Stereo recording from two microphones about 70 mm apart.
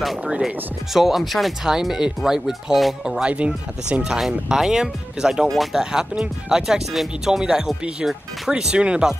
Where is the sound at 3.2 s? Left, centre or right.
Centre.